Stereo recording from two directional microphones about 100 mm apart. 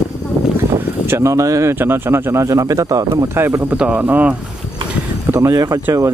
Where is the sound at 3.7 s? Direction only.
15° right (ahead or behind).